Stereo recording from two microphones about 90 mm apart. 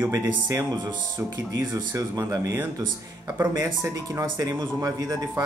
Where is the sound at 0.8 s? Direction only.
45° right (ahead or behind).